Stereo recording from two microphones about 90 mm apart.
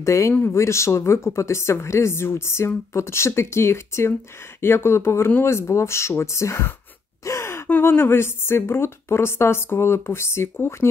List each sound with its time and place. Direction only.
0.0 s speech: 35° left (ahead or behind)